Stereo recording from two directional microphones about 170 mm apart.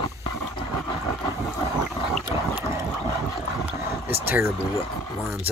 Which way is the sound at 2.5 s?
15° right (ahead or behind).